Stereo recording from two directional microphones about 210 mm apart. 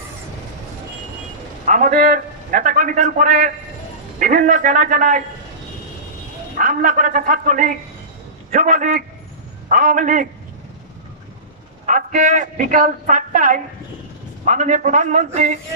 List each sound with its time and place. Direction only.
1.7 s a man's voice: 40° right (ahead or behind)
6.5 s a man's voice: 40° right (ahead or behind)
11.8 s a man's voice: 35° right (ahead or behind)